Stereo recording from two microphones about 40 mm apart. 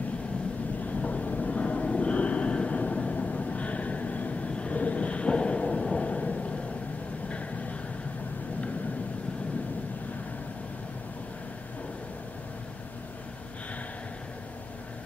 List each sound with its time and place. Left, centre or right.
0.8 s vehicle: left